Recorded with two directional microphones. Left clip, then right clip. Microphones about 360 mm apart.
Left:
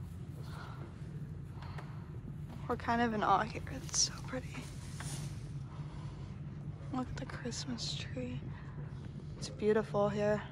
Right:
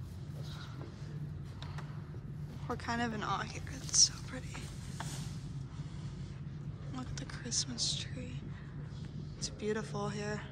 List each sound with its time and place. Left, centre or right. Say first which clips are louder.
2.7 s speech: left 4 dB; centre
4.9 s mechanisms: right 2 dB; right
6.9 s speech: left 5 dB; centre
9.4 s speech: left 6 dB; centre